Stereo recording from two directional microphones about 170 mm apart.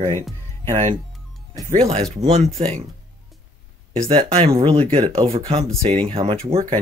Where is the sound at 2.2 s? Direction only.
40° right (ahead or behind).